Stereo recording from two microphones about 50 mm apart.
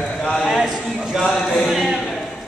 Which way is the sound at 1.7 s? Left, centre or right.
Centre.